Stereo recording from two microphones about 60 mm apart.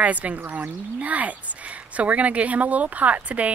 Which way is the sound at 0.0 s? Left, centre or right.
Right.